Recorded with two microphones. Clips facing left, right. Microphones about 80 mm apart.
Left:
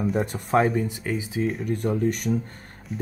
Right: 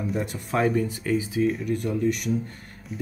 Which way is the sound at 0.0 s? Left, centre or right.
Left.